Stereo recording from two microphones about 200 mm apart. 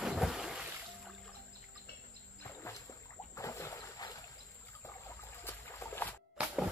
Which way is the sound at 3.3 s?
15° left (ahead or behind).